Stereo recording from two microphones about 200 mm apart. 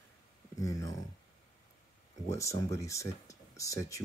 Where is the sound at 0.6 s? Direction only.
15° left (ahead or behind).